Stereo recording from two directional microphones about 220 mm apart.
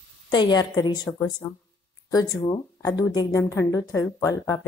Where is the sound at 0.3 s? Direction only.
20° left (ahead or behind).